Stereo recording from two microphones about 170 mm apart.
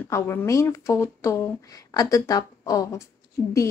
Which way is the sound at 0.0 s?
15° left (ahead or behind).